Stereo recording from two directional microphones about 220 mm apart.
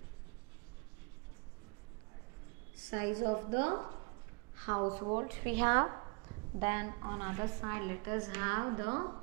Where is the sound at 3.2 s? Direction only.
25° right (ahead or behind).